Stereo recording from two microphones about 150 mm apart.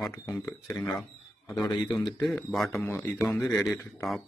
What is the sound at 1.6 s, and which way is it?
Speech, 30° left (ahead or behind).